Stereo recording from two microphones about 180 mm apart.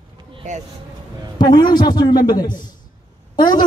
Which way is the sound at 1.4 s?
25° left (ahead or behind).